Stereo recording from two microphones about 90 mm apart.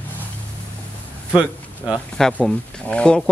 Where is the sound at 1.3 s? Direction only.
10° right (ahead or behind).